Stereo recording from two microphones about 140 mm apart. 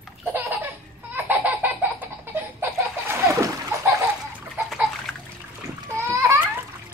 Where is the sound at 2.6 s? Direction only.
20° right (ahead or behind).